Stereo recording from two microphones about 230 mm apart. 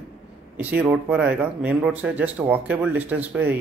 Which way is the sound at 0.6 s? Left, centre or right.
Centre.